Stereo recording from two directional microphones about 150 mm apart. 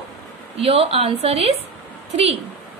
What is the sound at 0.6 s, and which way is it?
Speech, 40° right (ahead or behind).